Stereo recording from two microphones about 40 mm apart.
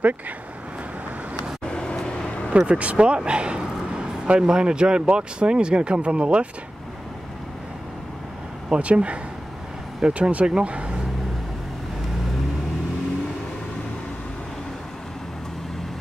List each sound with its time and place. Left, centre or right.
1.7 s vehicle: left
2.5 s speech: right
8.6 s speech: right